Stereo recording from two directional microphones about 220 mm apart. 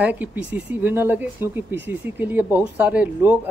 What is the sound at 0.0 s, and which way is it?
Speech, 5° right (ahead or behind).